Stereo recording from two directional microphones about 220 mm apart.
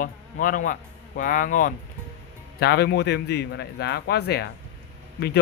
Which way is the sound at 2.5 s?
50° left (ahead or behind).